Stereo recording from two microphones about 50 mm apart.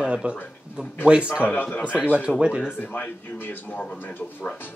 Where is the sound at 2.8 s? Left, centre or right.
Left.